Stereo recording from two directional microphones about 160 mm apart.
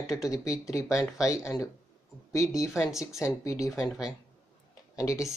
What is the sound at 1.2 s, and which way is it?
Speech, 20° left (ahead or behind).